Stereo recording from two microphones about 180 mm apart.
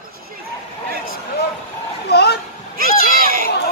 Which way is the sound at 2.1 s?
65° left (ahead or behind).